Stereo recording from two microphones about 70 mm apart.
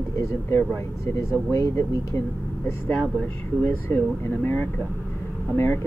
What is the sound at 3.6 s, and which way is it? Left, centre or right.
Speech, left.